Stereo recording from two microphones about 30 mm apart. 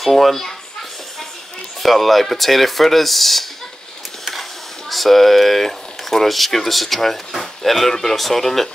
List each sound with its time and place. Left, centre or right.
0.0 s speech: centre
1.8 s speech: centre